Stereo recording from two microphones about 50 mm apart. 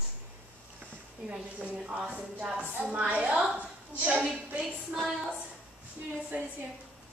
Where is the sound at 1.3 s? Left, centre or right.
Right.